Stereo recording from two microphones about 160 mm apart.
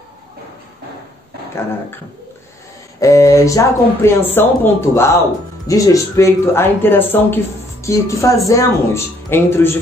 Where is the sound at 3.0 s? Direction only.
20° left (ahead or behind).